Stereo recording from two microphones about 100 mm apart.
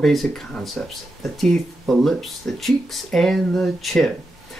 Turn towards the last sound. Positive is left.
turn(degrees=0)  # may be behind; listen again after turning